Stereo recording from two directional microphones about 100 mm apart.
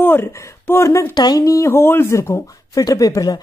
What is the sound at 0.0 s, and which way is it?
Speech, 20° left (ahead or behind).